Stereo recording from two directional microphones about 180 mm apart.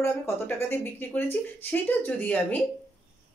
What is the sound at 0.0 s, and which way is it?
Speech, 10° left (ahead or behind).